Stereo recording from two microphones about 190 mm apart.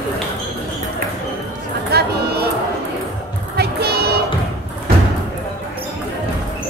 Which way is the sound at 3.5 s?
55° right (ahead or behind).